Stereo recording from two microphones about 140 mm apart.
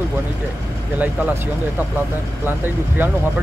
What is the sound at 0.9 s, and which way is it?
Speech, 10° right (ahead or behind).